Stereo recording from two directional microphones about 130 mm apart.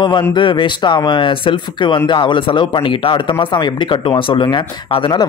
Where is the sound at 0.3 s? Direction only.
35° left (ahead or behind).